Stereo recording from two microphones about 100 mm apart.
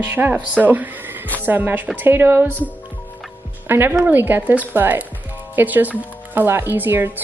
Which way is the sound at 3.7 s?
20° right (ahead or behind).